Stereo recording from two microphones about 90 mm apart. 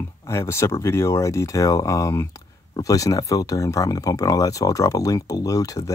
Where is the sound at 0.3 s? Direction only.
30° left (ahead or behind).